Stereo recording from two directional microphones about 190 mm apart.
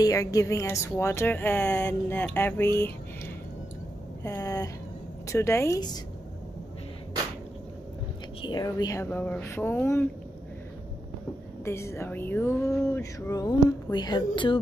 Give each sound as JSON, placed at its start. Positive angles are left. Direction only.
{"t": 0.0, "sound": "speech", "side_deg": 15}
{"t": 4.2, "sound": "a sound", "side_deg": 15}
{"t": 5.3, "sound": "speech", "side_deg": 15}
{"t": 8.4, "sound": "speech", "side_deg": 25}
{"t": 11.6, "sound": "speech", "side_deg": 15}